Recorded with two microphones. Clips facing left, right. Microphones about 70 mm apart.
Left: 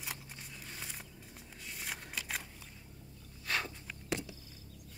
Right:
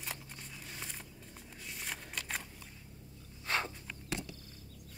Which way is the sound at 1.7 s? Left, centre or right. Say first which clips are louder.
Even; centre.